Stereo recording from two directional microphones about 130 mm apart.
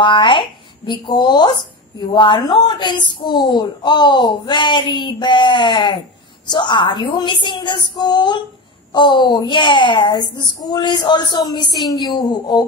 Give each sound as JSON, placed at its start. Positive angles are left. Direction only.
{"t": 0.0, "sound": "speech", "side_deg": 40}